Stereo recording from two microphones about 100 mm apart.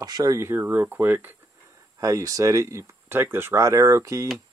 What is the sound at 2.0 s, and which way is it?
Speech, 35° right (ahead or behind).